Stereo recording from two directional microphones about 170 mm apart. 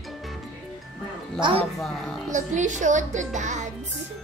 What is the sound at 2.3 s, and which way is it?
A child's voice, 45° right (ahead or behind).